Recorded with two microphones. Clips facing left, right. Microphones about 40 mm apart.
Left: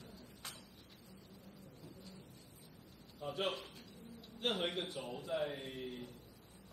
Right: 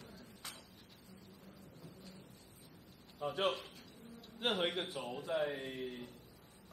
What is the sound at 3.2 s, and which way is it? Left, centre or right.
A man's voice, centre.